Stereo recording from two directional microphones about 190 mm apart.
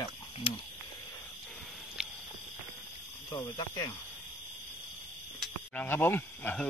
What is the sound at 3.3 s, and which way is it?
Speech, 20° left (ahead or behind).